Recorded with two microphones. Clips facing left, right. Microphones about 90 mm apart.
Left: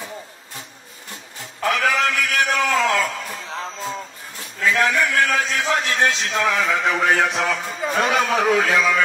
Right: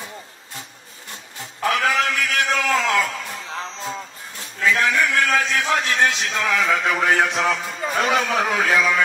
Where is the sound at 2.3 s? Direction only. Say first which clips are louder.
Even; 30° left (ahead or behind).